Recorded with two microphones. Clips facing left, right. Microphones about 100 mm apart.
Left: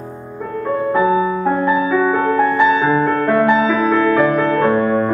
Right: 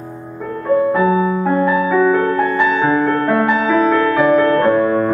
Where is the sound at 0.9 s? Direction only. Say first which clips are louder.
Even; 10° left (ahead or behind).